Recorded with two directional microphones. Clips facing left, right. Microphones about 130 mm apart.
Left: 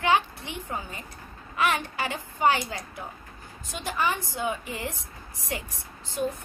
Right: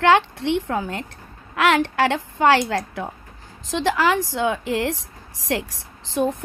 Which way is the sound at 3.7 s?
90° right.